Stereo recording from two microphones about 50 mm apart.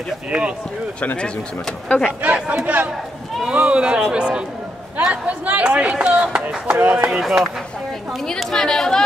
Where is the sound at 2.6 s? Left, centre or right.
Right.